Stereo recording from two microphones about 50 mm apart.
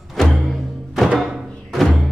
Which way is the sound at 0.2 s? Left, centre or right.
Centre.